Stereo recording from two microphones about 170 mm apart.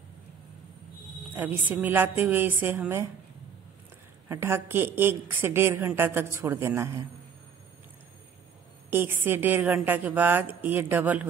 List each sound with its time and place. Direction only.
1.3 s a woman's voice: 10° right (ahead or behind)
4.3 s a woman's voice: 15° right (ahead or behind)
8.9 s a woman's voice: 10° right (ahead or behind)